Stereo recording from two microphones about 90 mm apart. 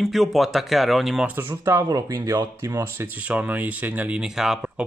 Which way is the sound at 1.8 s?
45° right (ahead or behind).